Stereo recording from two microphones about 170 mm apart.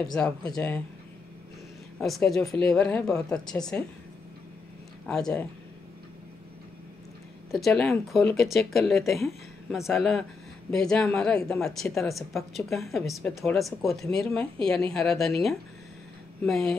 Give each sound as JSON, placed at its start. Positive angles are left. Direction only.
{"t": 0.0, "sound": "a woman's voice", "side_deg": 5}
{"t": 2.0, "sound": "a woman's voice", "side_deg": 0}
{"t": 5.0, "sound": "a woman's voice", "side_deg": 5}
{"t": 7.5, "sound": "a woman's voice", "side_deg": 0}